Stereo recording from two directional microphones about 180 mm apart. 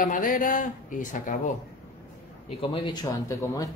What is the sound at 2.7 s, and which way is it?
A woman's voice, 25° left (ahead or behind).